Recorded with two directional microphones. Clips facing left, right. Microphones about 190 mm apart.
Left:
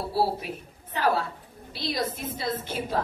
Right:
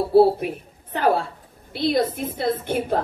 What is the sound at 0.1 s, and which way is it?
Speech, 55° right (ahead or behind).